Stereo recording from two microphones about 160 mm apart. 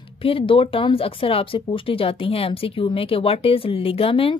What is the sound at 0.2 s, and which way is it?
Speech, 35° left (ahead or behind).